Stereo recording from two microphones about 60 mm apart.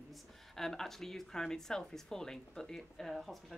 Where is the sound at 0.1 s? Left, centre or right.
Centre.